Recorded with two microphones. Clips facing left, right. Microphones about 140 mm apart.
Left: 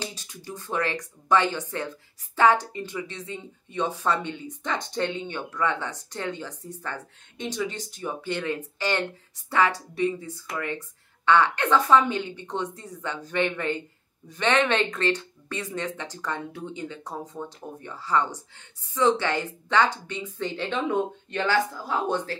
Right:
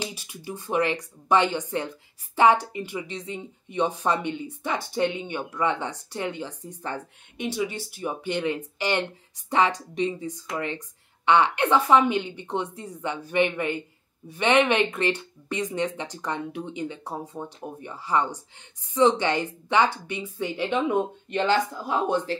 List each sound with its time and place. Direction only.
0.0 s speech: 10° right (ahead or behind)